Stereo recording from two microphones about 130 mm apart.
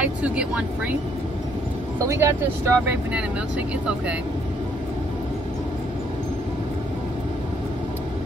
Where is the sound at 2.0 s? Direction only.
20° right (ahead or behind).